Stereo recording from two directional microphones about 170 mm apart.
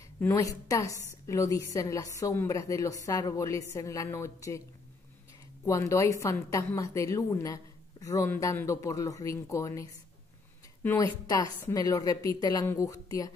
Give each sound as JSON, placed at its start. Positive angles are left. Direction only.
{"t": 0.2, "sound": "a woman's voice", "side_deg": 20}
{"t": 5.7, "sound": "a woman's voice", "side_deg": 20}